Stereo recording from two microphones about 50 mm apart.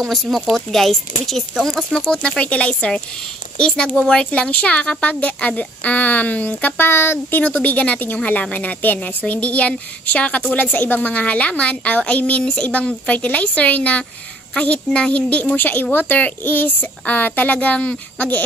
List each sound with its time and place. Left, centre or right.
0.1 s speech: centre
2.0 s speech: centre; by 6.9 s left
6.9 s speech: left
7.2 s speech: left
15.5 s speech: left